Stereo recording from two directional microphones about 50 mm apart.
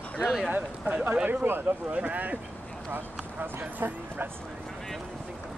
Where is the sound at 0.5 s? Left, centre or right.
Right.